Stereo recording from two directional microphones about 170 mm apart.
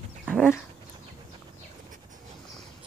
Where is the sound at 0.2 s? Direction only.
5° right (ahead or behind).